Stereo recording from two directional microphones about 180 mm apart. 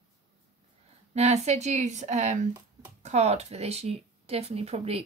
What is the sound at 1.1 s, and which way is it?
Speech, 40° right (ahead or behind).